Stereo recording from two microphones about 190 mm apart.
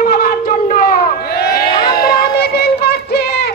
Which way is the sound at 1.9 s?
55° left (ahead or behind).